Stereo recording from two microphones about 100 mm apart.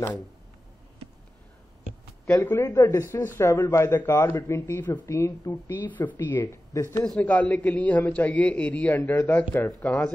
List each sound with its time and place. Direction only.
2.4 s speech: 25° left (ahead or behind)
5.5 s speech: 20° left (ahead or behind); by 7.1 s 35° left (ahead or behind)
7.2 s a man's voice: 15° left (ahead or behind)